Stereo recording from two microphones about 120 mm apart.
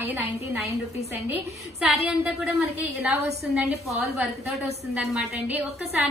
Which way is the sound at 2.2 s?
10° right (ahead or behind).